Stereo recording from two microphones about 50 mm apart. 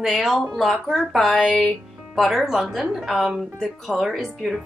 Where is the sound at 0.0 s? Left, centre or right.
Centre.